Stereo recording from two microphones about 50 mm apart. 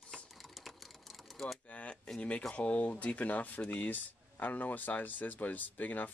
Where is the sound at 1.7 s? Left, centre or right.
Left.